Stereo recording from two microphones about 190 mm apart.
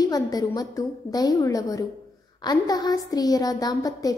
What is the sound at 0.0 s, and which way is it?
A woman's voice, 20° left (ahead or behind).